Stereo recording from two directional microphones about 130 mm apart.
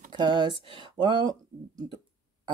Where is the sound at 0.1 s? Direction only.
35° right (ahead or behind).